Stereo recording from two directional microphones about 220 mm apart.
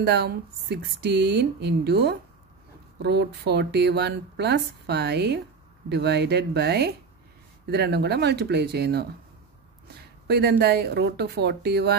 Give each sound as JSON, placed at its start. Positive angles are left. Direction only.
{"t": 0.0, "sound": "speech", "side_deg": -45}
{"t": 10.2, "sound": "speech", "side_deg": -45}